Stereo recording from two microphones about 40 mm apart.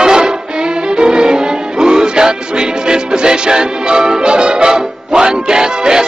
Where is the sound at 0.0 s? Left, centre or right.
Centre.